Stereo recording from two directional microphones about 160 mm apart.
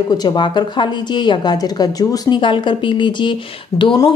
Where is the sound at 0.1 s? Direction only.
25° left (ahead or behind).